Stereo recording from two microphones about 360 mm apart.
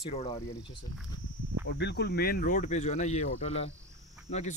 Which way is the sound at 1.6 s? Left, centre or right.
Left.